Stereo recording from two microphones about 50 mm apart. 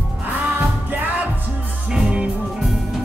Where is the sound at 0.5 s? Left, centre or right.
Right.